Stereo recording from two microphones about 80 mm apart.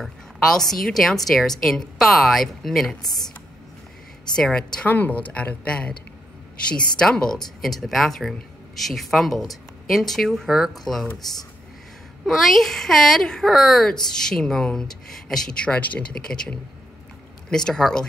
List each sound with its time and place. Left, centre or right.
0.0 s speech: centre
4.4 s speech: centre
4.8 s speech: left
7.0 s speech: centre
12.3 s speech: centre